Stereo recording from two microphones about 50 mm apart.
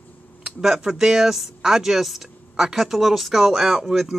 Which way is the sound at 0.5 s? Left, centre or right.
Centre.